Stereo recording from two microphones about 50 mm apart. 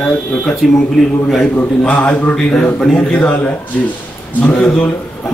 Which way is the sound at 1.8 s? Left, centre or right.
Left.